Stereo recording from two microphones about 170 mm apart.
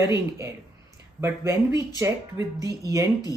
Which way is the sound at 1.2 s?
20° right (ahead or behind).